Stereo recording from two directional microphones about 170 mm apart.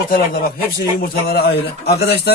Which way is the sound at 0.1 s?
60° left (ahead or behind).